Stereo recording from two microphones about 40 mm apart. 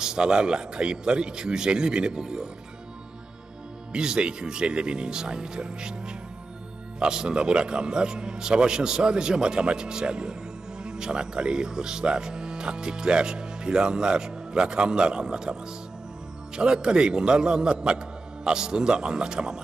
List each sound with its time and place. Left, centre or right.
0.0 s speech: centre
3.9 s speech: centre
16.5 s speech: right